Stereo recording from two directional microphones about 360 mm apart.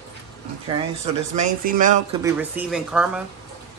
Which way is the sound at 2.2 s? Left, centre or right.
Centre.